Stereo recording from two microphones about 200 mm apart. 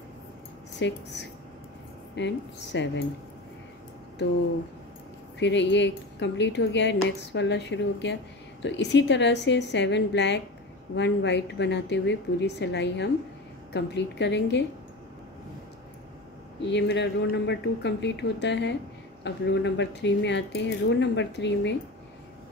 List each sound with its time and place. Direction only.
0.7 s speech: 60° left (ahead or behind)
5.4 s speech: 60° left (ahead or behind)
16.6 s speech: 60° left (ahead or behind)